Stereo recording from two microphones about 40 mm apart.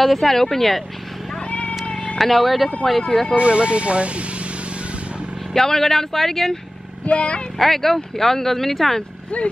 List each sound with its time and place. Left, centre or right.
0.0 s speech: centre
1.5 s cat: left
2.1 s speech: centre
3.0 s speech: centre
3.3 s speech: right
5.5 s speech: centre
7.1 s speech: left
7.5 s speech: centre
9.3 s speech: left